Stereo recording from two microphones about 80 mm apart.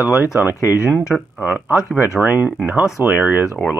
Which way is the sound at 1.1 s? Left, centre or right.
Centre.